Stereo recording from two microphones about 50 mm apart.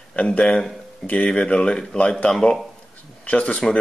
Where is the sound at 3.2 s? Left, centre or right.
Left.